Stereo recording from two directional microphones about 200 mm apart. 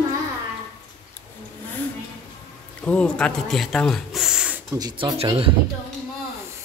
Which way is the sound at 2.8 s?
5° left (ahead or behind).